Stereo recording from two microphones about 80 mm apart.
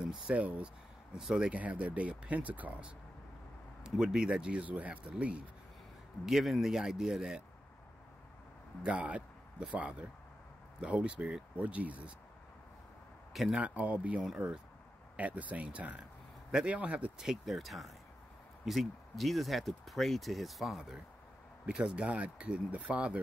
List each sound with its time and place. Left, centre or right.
0.3 s speech: centre
1.5 s speech: centre
3.8 s speech: centre
6.2 s speech: centre
8.8 s speech: centre
13.5 s speech: centre
17.2 s speech: centre
21.6 s speech: centre